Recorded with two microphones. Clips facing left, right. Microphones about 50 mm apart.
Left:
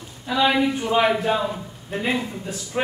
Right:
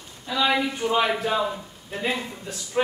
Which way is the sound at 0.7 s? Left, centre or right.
Centre.